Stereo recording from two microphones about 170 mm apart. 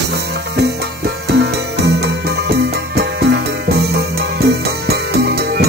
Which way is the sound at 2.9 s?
70° right (ahead or behind).